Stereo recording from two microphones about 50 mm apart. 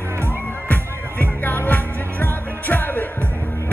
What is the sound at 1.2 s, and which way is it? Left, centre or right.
Music, left.